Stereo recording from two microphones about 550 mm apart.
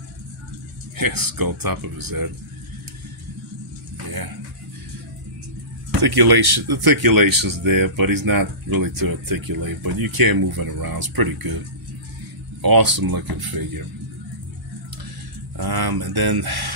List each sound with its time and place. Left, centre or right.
0.9 s speech: right
5.9 s speech: right
12.6 s speech: right
15.5 s speech: right